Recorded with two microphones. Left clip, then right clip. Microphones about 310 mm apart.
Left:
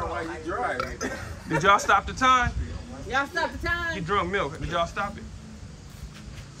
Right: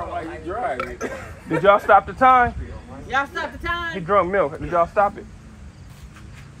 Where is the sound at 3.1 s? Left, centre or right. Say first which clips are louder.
Right 3 dB; centre.